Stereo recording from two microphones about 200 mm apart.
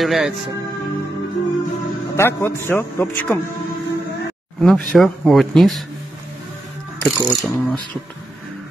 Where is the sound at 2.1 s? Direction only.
10° left (ahead or behind).